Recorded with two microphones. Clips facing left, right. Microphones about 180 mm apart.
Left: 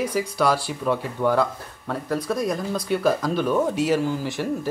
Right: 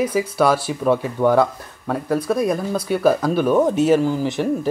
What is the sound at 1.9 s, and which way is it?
Speech, 10° right (ahead or behind).